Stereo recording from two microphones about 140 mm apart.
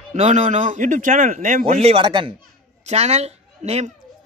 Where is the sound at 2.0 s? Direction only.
35° right (ahead or behind).